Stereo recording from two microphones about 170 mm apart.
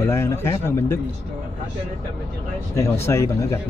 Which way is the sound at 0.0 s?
15° left (ahead or behind).